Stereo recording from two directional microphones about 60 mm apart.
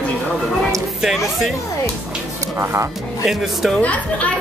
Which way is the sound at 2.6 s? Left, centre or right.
Right.